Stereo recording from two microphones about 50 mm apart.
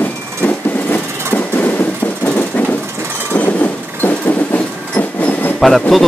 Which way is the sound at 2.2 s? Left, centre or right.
Left.